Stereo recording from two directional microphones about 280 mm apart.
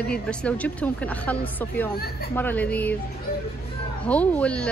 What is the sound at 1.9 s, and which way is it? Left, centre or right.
Speech, left.